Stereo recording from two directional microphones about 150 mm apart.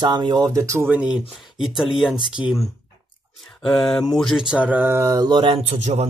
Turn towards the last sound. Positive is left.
turn(degrees=-45)  # may be behind; listen again after turning